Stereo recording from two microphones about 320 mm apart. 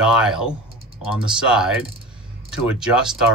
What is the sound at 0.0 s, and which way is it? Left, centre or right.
Speech, centre.